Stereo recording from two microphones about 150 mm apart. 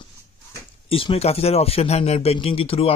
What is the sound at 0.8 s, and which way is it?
Speech, 40° left (ahead or behind).